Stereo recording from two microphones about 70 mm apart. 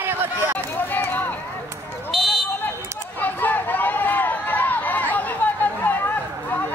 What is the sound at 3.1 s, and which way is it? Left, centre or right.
Chatter, left.